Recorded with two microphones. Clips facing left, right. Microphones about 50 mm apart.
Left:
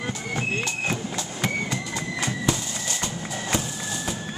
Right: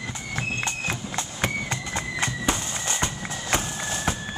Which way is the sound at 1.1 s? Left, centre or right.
Right.